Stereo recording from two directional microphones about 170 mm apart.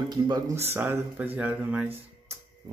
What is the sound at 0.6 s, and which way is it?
A man's voice, 15° right (ahead or behind).